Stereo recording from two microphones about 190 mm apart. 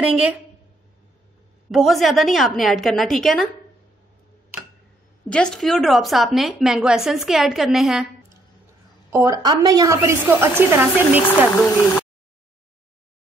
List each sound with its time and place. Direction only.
0.0 s a woman's voice: 5° right (ahead or behind)
1.7 s a woman's voice: centre (ahead or behind)
5.3 s a woman's voice: 5° left (ahead or behind)
9.1 s a woman's voice: 15° right (ahead or behind)
11.2 s speech: 10° left (ahead or behind)